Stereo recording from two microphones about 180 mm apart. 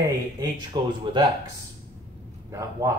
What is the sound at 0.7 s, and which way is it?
Speech, 25° right (ahead or behind).